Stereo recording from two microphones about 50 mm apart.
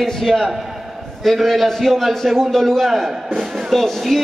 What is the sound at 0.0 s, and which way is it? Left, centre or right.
A man's voice, centre.